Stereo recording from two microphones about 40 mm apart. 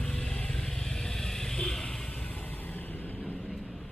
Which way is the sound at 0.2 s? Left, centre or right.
Left.